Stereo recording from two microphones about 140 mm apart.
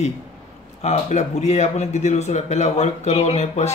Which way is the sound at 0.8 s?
55° left (ahead or behind).